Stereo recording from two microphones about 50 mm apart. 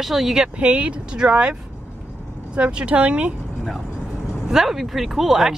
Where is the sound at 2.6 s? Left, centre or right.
Right.